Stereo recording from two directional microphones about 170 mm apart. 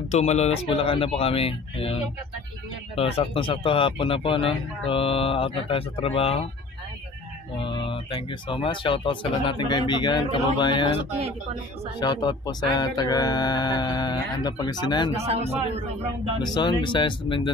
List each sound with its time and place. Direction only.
0.1 s speech: 40° left (ahead or behind)
3.0 s speech: 35° left (ahead or behind)
7.5 s speech: 30° left (ahead or behind)
12.0 s speech: 25° left (ahead or behind)
15.1 s a man's voice: 35° right (ahead or behind)
16.5 s speech: 25° left (ahead or behind)